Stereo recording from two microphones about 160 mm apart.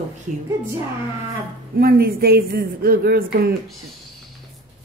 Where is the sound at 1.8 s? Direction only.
70° right (ahead or behind).